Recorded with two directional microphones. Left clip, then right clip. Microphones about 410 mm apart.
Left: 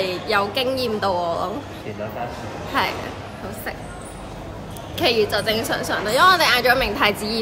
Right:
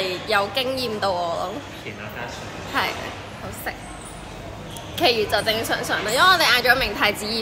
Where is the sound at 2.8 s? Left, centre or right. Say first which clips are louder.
Left 2 dB; centre.